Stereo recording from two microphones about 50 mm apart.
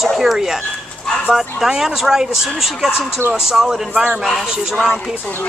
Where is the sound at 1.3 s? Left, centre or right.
Centre.